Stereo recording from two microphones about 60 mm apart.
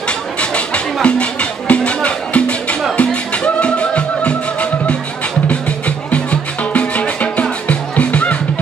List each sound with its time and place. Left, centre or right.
0.4 s music: centre